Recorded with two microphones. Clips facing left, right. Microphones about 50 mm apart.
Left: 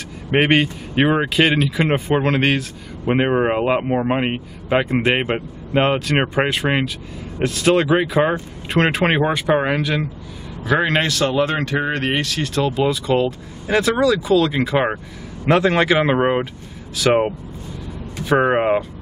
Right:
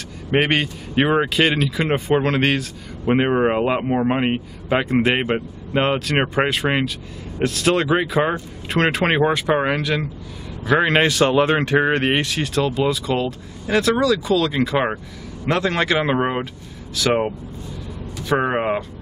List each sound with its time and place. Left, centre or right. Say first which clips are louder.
0.3 s a man's voice: left 3 dB; centre
12.5 s speech: left 1 dB; centre